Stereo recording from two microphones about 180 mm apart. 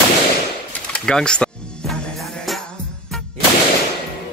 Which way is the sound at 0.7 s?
5° left (ahead or behind).